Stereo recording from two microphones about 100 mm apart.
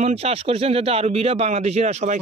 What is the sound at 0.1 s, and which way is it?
A man's voice, 90° right.